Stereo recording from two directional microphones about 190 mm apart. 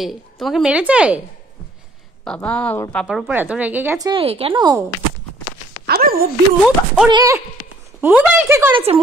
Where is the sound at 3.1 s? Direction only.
5° right (ahead or behind).